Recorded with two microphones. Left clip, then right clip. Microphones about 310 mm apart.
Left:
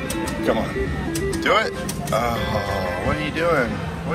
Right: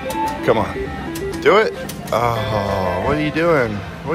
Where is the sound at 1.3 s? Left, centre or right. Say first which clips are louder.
Right 6 dB; centre.